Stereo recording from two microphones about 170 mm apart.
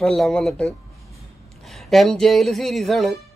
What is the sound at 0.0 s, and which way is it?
Speech, centre (ahead or behind).